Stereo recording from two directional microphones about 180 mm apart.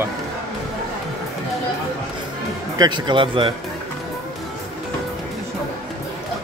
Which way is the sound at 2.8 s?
25° right (ahead or behind).